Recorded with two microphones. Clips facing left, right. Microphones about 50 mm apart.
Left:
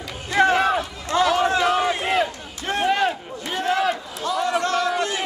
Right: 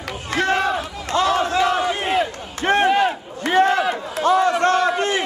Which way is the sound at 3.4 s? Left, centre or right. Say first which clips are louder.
Right 9 dB; right.